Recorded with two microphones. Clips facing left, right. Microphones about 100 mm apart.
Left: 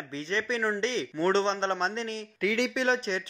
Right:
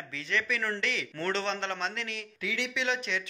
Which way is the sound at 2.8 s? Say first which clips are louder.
Left 1 dB; 35° left (ahead or behind).